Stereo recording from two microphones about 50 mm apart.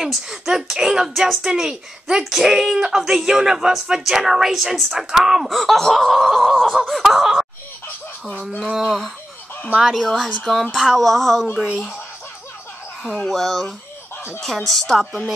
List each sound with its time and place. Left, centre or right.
0.0 s a woman's voice: centre
8.7 s speech: centre
13.3 s speech: centre